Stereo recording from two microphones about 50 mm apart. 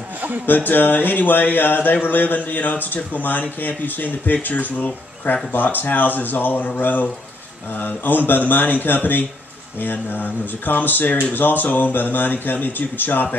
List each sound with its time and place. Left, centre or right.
0.5 s speech: left